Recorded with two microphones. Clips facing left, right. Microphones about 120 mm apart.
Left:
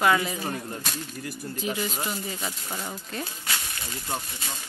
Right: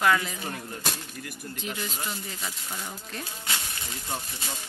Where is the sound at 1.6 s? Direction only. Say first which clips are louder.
Left 5 dB; 10° left (ahead or behind).